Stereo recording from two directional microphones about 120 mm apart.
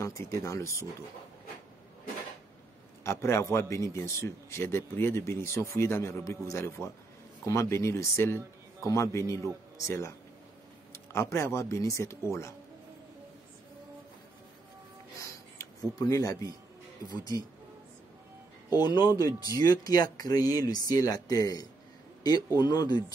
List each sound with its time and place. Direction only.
0.0 s a man's voice: 25° left (ahead or behind)
3.0 s a man's voice: 25° left (ahead or behind)
15.1 s a sound: 25° left (ahead or behind)
17.2 s speech: 30° left (ahead or behind)
18.8 s speech: 35° left (ahead or behind)